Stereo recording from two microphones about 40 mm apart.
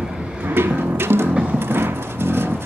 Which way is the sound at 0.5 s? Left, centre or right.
Right.